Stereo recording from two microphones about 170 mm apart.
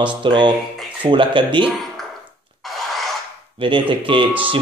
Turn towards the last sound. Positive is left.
turn(degrees=-30)  # may be behind; listen again after turning